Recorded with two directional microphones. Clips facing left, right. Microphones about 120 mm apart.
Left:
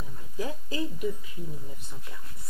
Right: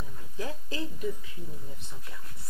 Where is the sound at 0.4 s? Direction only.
10° left (ahead or behind).